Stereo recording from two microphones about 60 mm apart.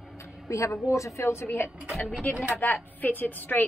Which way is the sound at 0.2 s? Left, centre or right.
Left.